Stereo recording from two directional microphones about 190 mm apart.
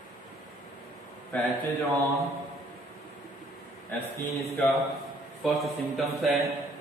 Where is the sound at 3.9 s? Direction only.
10° left (ahead or behind).